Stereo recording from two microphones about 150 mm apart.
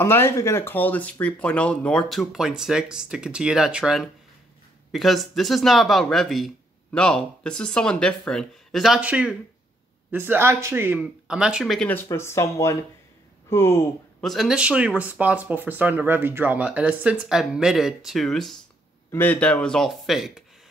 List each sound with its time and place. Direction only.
0.0 s speech: 15° left (ahead or behind); by 11.9 s centre (ahead or behind)
11.9 s speech: 15° left (ahead or behind)
14.2 s speech: centre (ahead or behind)